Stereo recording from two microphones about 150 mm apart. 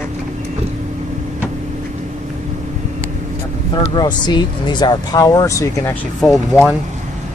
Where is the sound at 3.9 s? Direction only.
30° left (ahead or behind).